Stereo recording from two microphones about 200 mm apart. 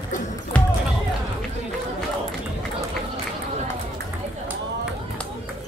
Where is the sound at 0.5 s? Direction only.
5° left (ahead or behind).